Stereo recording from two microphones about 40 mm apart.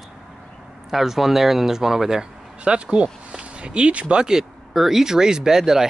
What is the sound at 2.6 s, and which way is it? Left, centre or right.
Speech, right.